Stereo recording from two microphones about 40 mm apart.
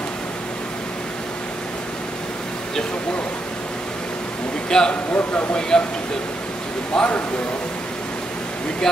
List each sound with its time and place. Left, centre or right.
4.6 s a man's voice: centre
5.1 s speech: left
5.5 s speech: left
6.9 s a man's voice: centre
8.9 s speech: centre